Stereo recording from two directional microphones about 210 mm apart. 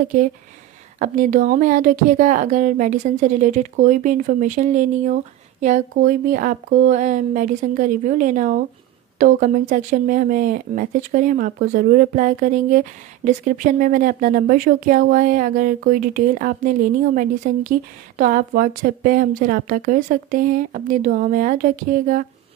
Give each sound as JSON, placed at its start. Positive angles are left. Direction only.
{"t": 0.9, "sound": "speech", "side_deg": -40}